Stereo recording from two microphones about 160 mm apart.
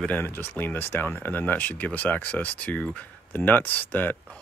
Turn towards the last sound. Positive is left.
turn(degrees=10)  # may be behind; listen again after turning